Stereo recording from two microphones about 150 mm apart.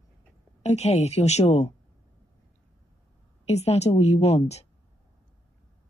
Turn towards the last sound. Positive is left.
turn(degrees=45)  # may be behind; listen again after turning